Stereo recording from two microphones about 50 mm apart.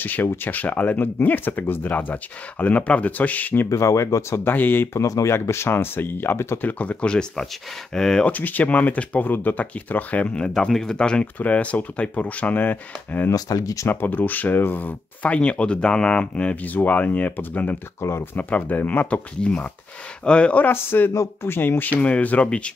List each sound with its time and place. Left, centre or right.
0.0 s speech: left
3.6 s speech: left
4.5 s speech: left
4.9 s speech: left
6.6 s speech: left; by 8.3 s centre
8.3 s speech: left; by 11.2 s centre
11.3 s speech: left
15.3 s speech: left
19.0 s speech: left
20.7 s speech: left
22.0 s speech: left